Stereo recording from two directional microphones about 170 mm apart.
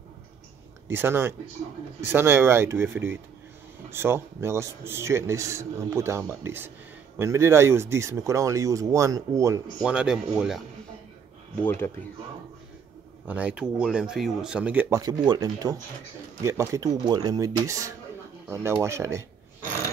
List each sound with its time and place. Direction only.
0.8 s a man's voice: 15° right (ahead or behind)
9.8 s speech: 5° right (ahead or behind)
11.6 s speech: 15° left (ahead or behind)
13.3 s speech: 10° right (ahead or behind)
15.0 s a man's voice: 25° right (ahead or behind)